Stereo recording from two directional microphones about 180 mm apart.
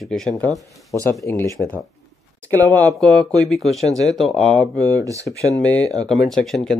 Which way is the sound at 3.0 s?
5° left (ahead or behind).